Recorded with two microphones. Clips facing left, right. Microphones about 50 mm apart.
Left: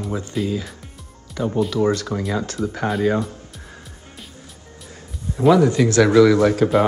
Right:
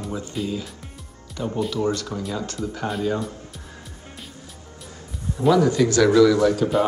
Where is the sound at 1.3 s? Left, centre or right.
Left.